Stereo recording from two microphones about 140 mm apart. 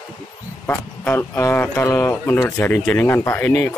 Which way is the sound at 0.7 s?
15° left (ahead or behind).